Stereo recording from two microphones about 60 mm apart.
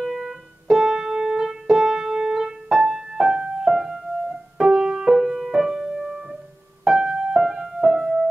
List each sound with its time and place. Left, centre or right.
0.0 s music: centre